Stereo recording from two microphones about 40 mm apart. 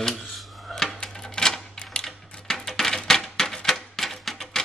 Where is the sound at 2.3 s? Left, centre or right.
Centre.